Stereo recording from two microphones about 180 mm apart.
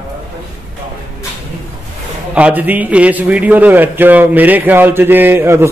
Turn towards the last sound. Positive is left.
turn(degrees=-15)  # may be behind; listen again after turning